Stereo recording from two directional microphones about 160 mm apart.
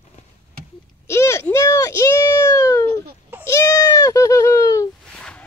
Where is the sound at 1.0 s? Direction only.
15° left (ahead or behind).